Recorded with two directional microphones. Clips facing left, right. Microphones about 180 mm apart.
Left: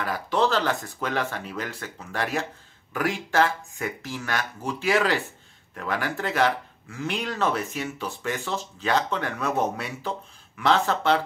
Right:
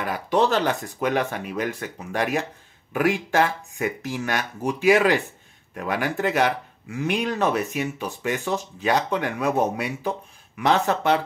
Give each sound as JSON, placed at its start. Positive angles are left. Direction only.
{"t": 0.0, "sound": "speech", "side_deg": -15}